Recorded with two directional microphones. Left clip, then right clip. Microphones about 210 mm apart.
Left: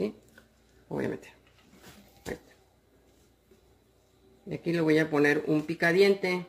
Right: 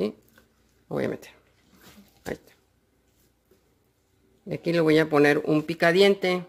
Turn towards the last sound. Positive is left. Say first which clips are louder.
# right 4 dB
turn(degrees=-55)  # may be behind; listen again after turning